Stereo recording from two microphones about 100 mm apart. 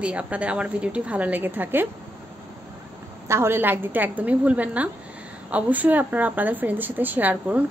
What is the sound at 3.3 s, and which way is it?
Speech, 25° right (ahead or behind).